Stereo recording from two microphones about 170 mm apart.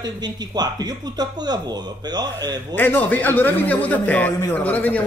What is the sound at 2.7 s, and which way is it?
A man's voice, 10° left (ahead or behind).